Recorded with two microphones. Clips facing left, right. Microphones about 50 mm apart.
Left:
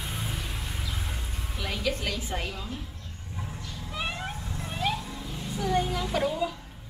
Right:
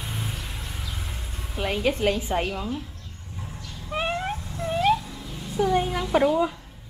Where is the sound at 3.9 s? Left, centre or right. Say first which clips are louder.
Right 7 dB; right.